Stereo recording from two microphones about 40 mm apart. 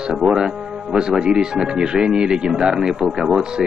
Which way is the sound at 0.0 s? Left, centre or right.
Centre.